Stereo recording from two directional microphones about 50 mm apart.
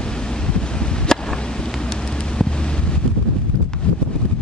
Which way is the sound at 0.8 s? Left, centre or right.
Centre.